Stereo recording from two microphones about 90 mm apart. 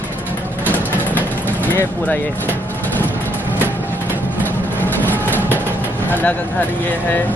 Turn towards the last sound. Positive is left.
turn(degrees=20)  # may be behind; listen again after turning